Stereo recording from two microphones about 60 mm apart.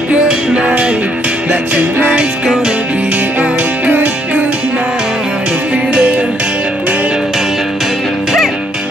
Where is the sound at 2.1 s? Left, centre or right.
Centre.